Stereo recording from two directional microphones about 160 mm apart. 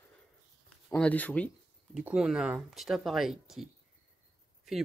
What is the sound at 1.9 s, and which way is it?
Speech, 5° right (ahead or behind).